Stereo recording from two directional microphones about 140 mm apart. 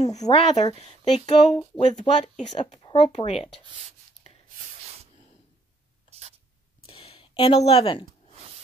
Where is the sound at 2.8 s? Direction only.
30° left (ahead or behind).